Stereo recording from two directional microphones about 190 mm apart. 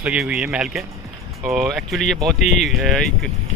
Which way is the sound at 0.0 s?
5° right (ahead or behind).